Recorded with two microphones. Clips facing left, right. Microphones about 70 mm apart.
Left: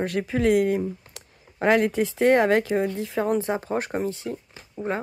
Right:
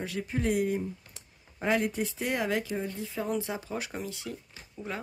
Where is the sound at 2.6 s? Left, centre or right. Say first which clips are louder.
Left 10 dB; left.